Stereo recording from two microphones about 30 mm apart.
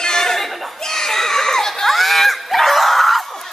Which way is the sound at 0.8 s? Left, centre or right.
Centre.